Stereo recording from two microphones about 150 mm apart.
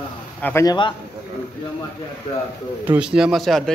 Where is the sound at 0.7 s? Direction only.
35° left (ahead or behind).